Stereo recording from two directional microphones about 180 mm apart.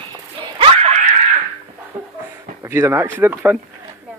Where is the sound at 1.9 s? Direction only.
40° right (ahead or behind).